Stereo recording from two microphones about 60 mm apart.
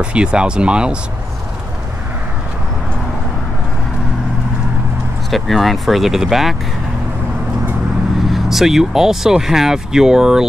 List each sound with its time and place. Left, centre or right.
0.0 s speech: centre
5.3 s speech: centre
8.3 s speech: centre